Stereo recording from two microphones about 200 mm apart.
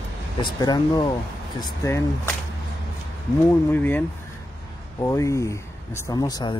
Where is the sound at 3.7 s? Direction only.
10° left (ahead or behind).